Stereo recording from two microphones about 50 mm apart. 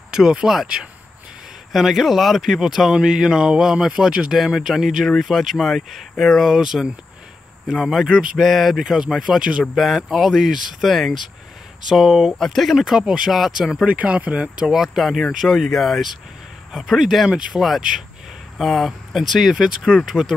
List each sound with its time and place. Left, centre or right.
0.1 s speech: centre
1.7 s speech: centre
6.5 s speech: centre
8.7 s speech: centre
12.3 s speech: centre
12.7 s speech: centre
13.0 s speech: centre
13.8 s speech: right
14.7 s speech: centre